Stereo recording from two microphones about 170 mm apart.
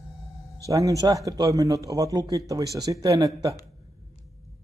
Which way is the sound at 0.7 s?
20° right (ahead or behind).